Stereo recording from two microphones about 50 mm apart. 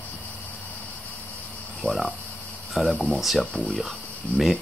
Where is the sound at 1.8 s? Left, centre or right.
Centre.